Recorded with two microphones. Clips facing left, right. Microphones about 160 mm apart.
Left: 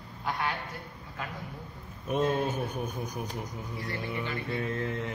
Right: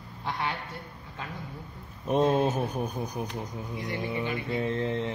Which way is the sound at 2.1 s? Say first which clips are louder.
Right 4 dB; 30° right (ahead or behind).